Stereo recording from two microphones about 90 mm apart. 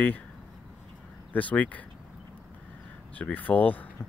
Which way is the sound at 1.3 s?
15° left (ahead or behind).